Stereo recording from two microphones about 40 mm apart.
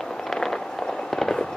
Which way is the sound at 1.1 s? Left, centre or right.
Centre.